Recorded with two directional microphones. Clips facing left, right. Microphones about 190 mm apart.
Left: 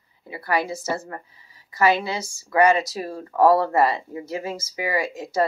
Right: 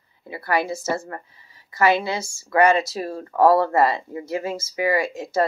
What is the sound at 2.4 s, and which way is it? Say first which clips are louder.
Speech: right 1 dB; 15° left (ahead or behind).